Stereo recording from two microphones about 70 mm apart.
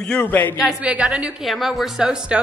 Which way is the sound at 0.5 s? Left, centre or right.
Centre.